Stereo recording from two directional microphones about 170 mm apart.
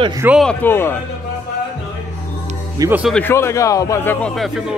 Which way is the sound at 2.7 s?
20° right (ahead or behind).